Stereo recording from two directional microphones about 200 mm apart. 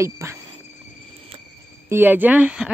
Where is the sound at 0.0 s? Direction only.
15° right (ahead or behind).